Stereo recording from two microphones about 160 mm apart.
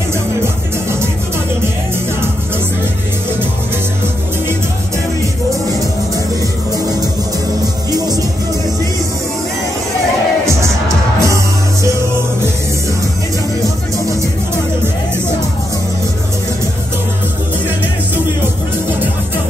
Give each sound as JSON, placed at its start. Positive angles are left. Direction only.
{"t": 10.4, "sound": "music", "side_deg": -20}